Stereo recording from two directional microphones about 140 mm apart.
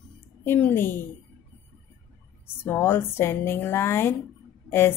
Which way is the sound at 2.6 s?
15° left (ahead or behind).